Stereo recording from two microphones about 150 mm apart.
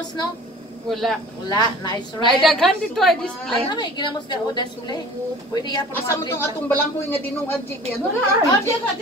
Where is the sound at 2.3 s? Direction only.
Centre (ahead or behind).